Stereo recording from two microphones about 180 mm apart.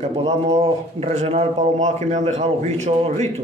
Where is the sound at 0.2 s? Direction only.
35° right (ahead or behind).